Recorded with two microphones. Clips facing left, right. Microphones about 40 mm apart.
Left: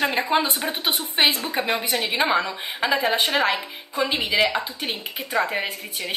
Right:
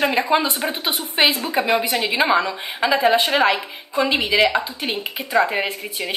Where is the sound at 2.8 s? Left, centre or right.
Centre.